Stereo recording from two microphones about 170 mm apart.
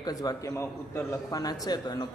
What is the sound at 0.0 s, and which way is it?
A man's voice, 20° left (ahead or behind).